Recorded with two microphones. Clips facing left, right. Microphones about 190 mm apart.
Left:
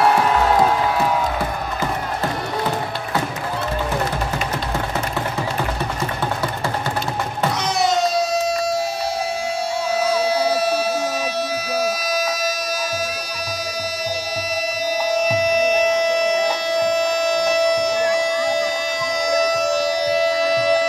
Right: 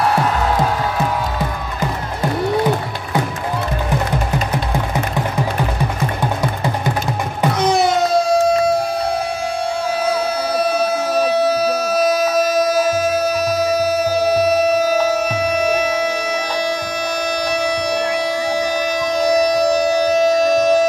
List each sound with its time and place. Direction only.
7.5 s music: 55° right (ahead or behind)
10.2 s a sound: 55° right (ahead or behind)
17.5 s music: 60° right (ahead or behind); by 20.8 s 45° right (ahead or behind)